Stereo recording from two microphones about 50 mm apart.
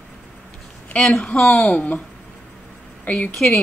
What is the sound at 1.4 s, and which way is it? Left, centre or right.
Speech, centre.